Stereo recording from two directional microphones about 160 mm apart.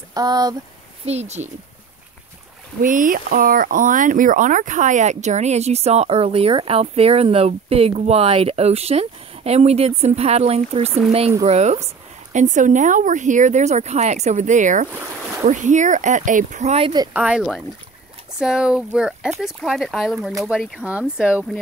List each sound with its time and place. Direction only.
0.1 s speech: 25° right (ahead or behind)
1.0 s speech: 40° right (ahead or behind)
2.8 s speech: 55° right (ahead or behind)
17.1 s speech: 5° right (ahead or behind)